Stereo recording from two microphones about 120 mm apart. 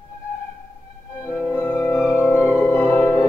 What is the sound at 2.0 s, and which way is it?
Music, 15° left (ahead or behind).